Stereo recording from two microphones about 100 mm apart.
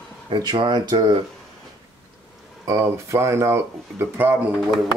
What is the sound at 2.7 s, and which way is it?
Speech, 30° right (ahead or behind).